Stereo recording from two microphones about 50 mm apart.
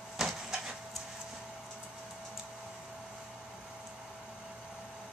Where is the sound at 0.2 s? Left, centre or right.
Centre.